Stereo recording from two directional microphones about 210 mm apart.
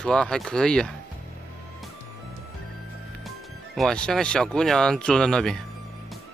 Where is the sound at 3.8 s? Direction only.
5° left (ahead or behind).